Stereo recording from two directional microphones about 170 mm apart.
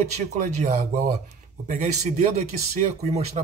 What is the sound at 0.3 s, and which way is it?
Speech, 40° right (ahead or behind).